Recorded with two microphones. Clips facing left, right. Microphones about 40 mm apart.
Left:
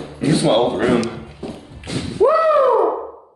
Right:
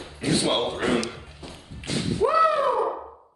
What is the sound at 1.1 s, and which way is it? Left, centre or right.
Clip-clop, left.